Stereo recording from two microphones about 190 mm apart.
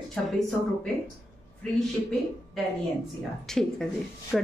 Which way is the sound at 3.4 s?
Centre (ahead or behind).